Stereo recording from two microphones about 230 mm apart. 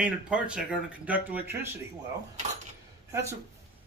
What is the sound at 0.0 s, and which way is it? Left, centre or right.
Speech, centre.